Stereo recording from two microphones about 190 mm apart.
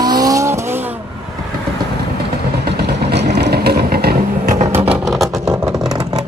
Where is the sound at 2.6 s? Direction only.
60° right (ahead or behind).